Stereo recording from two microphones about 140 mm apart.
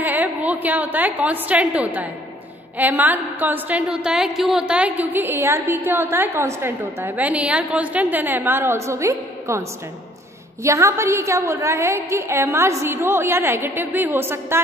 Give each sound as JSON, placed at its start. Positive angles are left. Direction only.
{"t": 0.0, "sound": "a woman's voice", "side_deg": -10}